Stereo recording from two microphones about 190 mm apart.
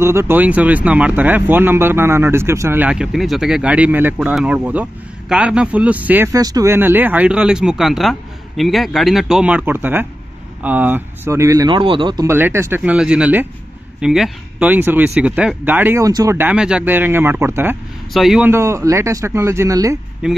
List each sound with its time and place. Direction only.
0.0 s speech: 15° right (ahead or behind)
12.3 s speech: 10° right (ahead or behind)
18.1 s speech: centre (ahead or behind)
18.5 s speech: 15° right (ahead or behind)
20.2 s speech: 5° right (ahead or behind)